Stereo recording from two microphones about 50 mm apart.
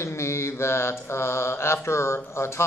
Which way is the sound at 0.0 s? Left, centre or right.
Left.